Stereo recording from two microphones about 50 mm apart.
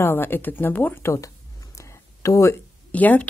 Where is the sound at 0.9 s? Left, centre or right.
Left.